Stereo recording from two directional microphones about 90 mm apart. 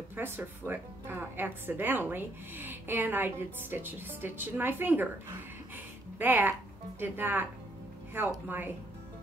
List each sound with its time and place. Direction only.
0.1 s speech: 25° right (ahead or behind)
6.1 s speech: 20° right (ahead or behind)